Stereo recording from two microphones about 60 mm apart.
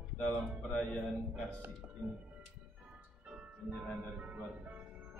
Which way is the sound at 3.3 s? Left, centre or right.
Centre.